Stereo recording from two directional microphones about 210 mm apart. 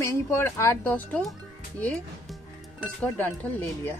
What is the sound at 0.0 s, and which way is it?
Speech, 10° left (ahead or behind).